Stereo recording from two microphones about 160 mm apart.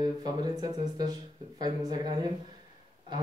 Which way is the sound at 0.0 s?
25° right (ahead or behind).